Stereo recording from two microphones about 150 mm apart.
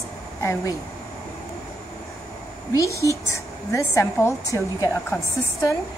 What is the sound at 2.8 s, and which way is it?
A woman's voice, 20° left (ahead or behind).